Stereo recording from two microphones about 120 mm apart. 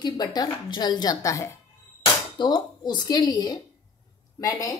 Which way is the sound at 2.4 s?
35° left (ahead or behind).